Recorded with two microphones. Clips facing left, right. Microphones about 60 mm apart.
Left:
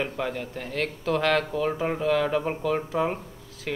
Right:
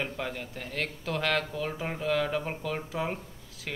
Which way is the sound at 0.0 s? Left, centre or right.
Centre.